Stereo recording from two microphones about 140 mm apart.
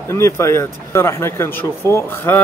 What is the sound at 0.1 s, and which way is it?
Speech, 20° left (ahead or behind).